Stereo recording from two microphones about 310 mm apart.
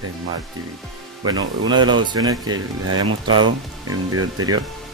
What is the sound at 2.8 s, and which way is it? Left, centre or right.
Speech, right.